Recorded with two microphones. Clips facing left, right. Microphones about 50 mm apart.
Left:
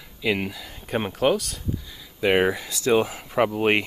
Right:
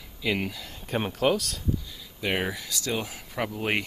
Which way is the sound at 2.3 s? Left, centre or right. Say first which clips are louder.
Left 9 dB; left.